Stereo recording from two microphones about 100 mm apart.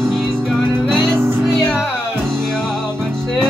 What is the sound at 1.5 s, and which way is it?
Music, centre (ahead or behind).